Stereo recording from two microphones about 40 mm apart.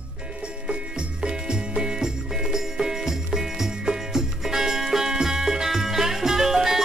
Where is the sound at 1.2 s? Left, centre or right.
Centre.